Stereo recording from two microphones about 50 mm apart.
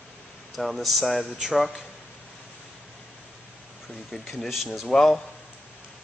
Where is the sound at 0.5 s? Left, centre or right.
Centre.